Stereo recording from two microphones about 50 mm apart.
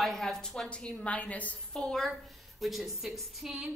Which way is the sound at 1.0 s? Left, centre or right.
Left.